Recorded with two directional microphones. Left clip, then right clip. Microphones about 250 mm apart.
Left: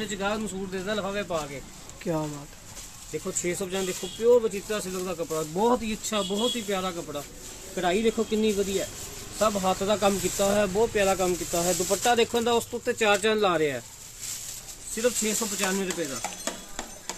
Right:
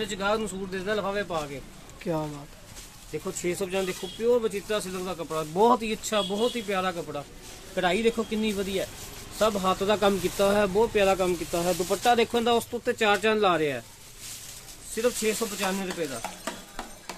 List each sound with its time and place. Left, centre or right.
0.0 s speech: right
2.0 s speech: centre
3.1 s speech: centre; by 7.2 s right
7.7 s speech: right
9.4 s speech: right; by 13.8 s centre
15.0 s speech: centre